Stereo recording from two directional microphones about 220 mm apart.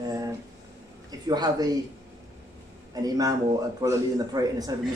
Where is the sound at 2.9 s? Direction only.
15° right (ahead or behind).